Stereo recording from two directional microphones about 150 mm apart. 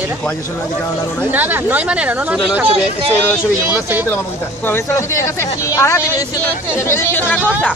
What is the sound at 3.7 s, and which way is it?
Speech, 10° right (ahead or behind).